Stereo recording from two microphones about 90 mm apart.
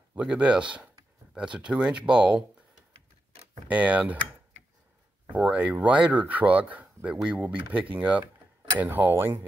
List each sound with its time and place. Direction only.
0.1 s speech: 10° right (ahead or behind)
3.6 s speech: 15° right (ahead or behind)
5.4 s speech: 15° right (ahead or behind)